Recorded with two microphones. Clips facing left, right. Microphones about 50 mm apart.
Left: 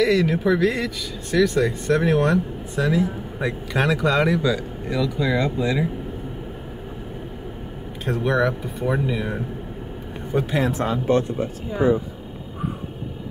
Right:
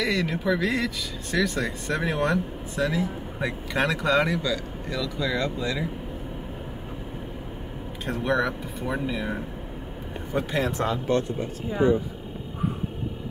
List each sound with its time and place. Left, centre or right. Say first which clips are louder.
0.0 s speech: left 7 dB; centre
4.4 s speech: left 5 dB; centre
8.0 s speech: left 4 dB; centre
11.1 s speech: left 7 dB; left